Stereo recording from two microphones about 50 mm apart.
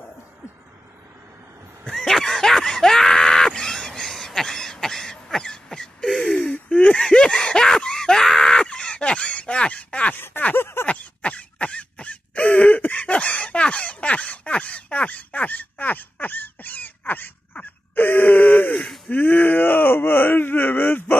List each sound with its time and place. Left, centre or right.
1.9 s screaming: centre
6.3 s gasp: left
6.7 s a sound: left
10.1 s a sound: left
10.9 s throat clearing: left
19.0 s groan: left